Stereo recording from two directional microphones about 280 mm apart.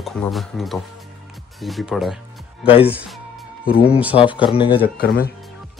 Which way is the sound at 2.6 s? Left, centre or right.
Centre.